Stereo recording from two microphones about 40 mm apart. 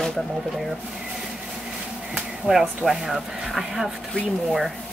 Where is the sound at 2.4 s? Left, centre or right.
Centre.